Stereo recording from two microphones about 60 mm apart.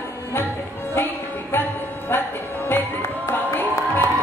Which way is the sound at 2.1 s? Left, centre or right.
Left.